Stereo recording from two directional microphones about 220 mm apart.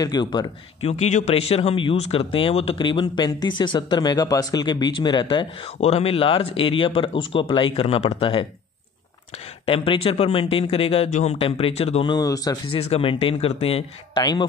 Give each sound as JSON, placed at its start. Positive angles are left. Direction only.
{"t": 0.0, "sound": "speech", "side_deg": 20}
{"t": 9.7, "sound": "speech", "side_deg": 25}